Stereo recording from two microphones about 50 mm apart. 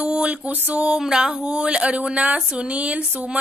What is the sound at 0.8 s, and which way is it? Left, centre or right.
A woman's voice, centre.